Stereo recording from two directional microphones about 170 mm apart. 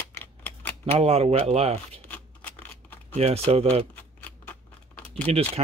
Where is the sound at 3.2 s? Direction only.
35° right (ahead or behind).